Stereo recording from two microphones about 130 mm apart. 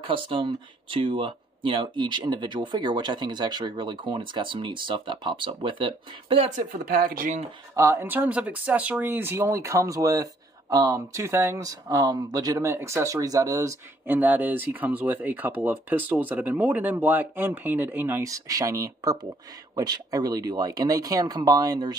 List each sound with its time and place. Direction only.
0.0 s speech: 40° right (ahead or behind)
6.5 s speech: 90° right
7.7 s speech: 20° right (ahead or behind)
14.0 s speech: 15° right (ahead or behind); by 21.9 s 30° right (ahead or behind)